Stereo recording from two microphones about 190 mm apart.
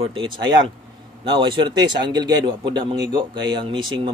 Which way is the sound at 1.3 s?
25° right (ahead or behind).